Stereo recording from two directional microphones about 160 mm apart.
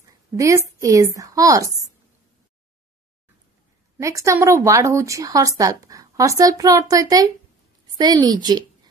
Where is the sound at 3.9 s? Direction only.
20° right (ahead or behind).